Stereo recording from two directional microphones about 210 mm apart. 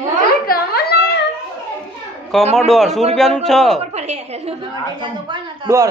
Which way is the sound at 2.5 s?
Centre (ahead or behind).